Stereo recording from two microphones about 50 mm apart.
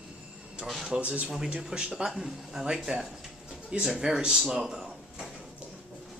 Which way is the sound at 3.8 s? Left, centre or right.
Centre.